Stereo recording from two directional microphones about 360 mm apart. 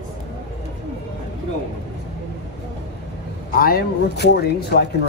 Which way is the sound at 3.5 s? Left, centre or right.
Left.